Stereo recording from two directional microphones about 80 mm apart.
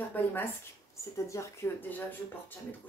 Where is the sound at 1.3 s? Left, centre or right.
Left.